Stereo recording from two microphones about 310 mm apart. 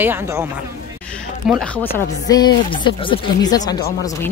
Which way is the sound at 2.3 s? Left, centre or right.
Centre.